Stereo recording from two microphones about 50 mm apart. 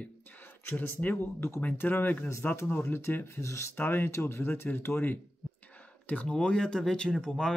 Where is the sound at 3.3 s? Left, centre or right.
Left.